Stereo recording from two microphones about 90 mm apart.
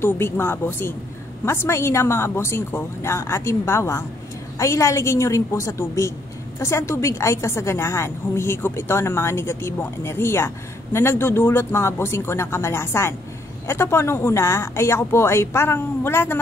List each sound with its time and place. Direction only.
0.0 s a woman's voice: 25° left (ahead or behind)